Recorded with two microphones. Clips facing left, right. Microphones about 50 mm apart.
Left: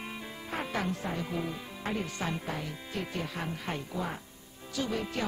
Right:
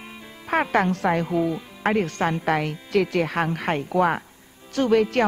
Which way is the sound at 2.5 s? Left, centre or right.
Right.